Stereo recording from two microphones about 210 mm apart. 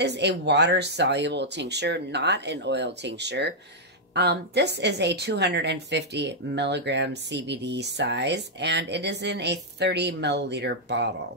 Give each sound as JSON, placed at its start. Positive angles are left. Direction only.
{"t": 0.0, "sound": "a woman's voice", "side_deg": -55}